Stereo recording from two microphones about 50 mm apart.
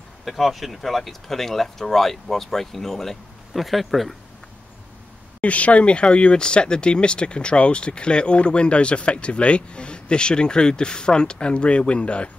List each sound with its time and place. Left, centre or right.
0.2 s speech: centre
5.4 s speech: left